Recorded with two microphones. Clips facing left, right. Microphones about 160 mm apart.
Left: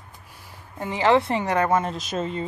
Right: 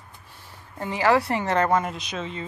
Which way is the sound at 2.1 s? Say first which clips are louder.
Left 7 dB; 45° left (ahead or behind).